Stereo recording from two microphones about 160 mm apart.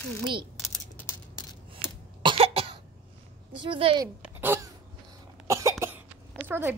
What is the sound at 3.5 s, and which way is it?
Speech, 30° right (ahead or behind).